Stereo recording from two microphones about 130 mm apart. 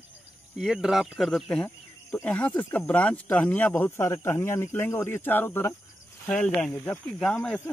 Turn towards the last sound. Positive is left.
turn(degrees=5)  # may be behind; listen again after turning